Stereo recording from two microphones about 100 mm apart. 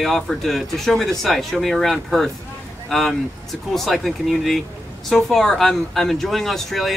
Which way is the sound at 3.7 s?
Centre (ahead or behind).